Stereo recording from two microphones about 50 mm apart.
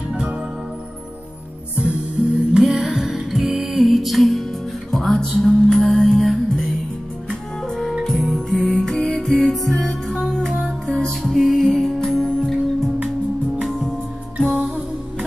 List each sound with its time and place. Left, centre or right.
0.1 s music: centre
1.8 s music: centre
2.6 s music: centre
11.3 s music: centre
12.1 s music: centre
14.4 s music: centre